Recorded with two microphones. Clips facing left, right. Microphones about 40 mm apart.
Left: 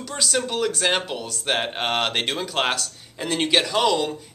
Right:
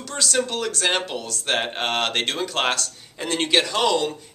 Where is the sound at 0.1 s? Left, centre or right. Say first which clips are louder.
Right 1 dB; centre.